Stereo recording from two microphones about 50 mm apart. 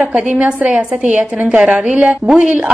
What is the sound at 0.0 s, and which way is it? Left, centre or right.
A woman's voice, right.